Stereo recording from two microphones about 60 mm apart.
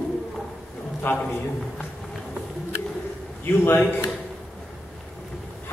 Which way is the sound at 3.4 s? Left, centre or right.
Left.